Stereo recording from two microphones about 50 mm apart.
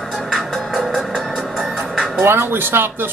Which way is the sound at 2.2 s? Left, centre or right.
Right.